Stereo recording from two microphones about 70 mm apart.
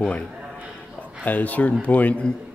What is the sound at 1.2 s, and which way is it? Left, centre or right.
Speech, left.